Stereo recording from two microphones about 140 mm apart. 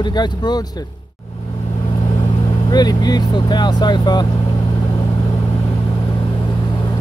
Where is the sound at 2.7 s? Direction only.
30° left (ahead or behind).